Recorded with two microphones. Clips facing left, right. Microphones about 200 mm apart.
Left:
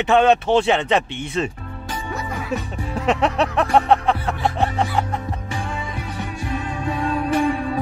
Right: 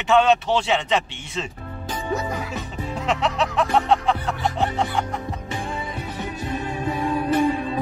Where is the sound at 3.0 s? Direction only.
60° left (ahead or behind).